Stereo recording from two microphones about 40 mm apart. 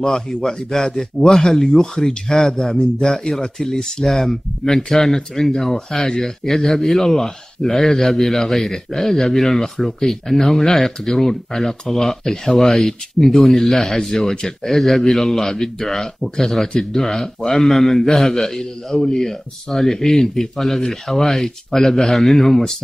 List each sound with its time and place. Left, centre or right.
0.1 s a man's voice: centre
14.3 s a man's voice: centre
14.7 s a man's voice: centre